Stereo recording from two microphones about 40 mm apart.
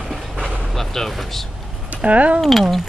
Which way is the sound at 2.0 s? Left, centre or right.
Right.